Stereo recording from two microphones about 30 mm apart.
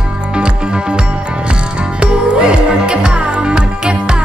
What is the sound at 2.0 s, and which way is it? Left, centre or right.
Music, right.